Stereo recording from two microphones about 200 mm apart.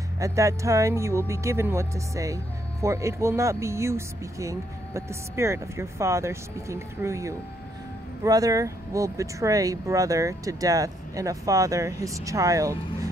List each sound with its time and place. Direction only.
0.2 s speech: 15° right (ahead or behind)